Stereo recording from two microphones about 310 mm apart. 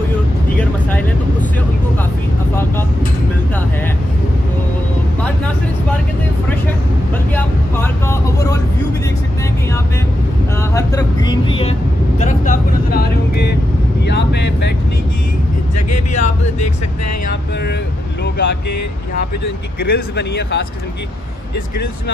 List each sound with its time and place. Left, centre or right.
0.6 s vehicle: centre
7.3 s speech: centre
10.7 s a sound: centre
12.2 s vehicle: left
15.7 s vehicle: left
18.2 s speech: left
19.8 s speech: left